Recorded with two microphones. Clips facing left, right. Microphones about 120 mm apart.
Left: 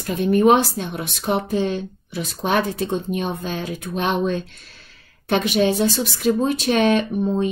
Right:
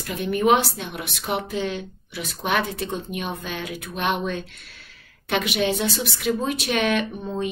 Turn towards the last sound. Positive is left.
turn(degrees=35)  # may be behind; listen again after turning